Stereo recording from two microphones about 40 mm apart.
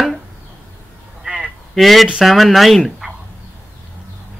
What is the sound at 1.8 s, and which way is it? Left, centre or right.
A man's voice, centre.